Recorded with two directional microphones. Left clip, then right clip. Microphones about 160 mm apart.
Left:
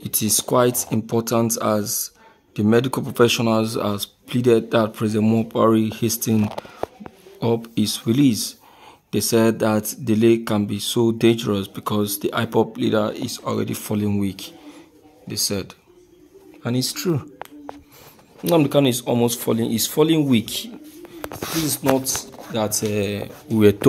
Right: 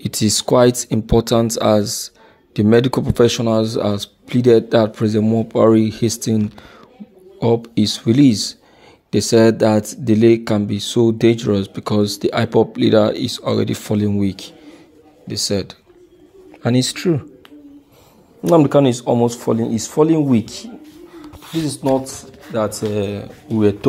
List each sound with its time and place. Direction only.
0.0 s speech: 30° right (ahead or behind); by 6.3 s 15° right (ahead or behind)
7.3 s speech: 15° right (ahead or behind)
18.4 s speech: 30° right (ahead or behind)
19.2 s speech: 5° right (ahead or behind)
20.2 s a sound: 5° right (ahead or behind)
21.6 s speech: 5° left (ahead or behind)
23.6 s rub: 25° left (ahead or behind)